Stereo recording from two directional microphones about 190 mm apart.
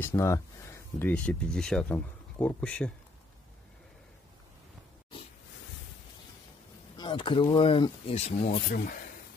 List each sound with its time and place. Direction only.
0.0 s speech: 15° left (ahead or behind)
7.0 s speech: 25° left (ahead or behind)
8.6 s speech: 45° left (ahead or behind)